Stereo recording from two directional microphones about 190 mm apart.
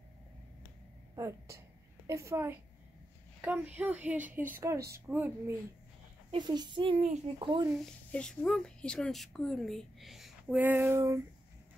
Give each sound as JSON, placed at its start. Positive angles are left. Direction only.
{"t": 1.1, "sound": "a woman's voice", "side_deg": -15}
{"t": 4.7, "sound": "a woman's voice", "side_deg": -55}
{"t": 5.0, "sound": "a woman's voice", "side_deg": -10}
{"t": 6.3, "sound": "a woman's voice", "side_deg": -20}
{"t": 7.7, "sound": "a woman's voice", "side_deg": 5}